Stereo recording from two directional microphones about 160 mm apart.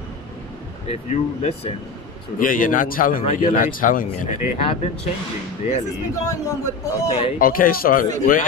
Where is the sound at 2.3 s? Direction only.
60° left (ahead or behind).